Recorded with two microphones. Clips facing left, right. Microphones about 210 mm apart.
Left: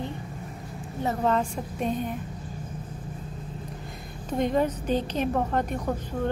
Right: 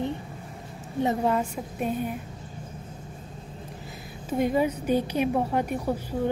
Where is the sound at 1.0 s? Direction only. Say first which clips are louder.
Even; 10° right (ahead or behind).